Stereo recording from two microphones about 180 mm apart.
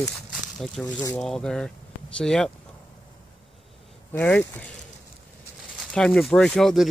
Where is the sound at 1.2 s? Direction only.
5° left (ahead or behind).